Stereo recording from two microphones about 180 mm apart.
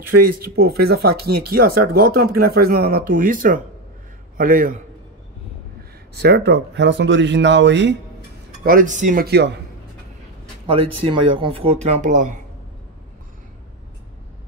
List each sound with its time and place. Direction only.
0.6 s speech: 60° right (ahead or behind)
6.1 s speech: 65° right (ahead or behind)
8.6 s speech: 50° right (ahead or behind); by 9.6 s 70° right (ahead or behind)
10.7 s speech: 30° right (ahead or behind); by 12.4 s 45° right (ahead or behind)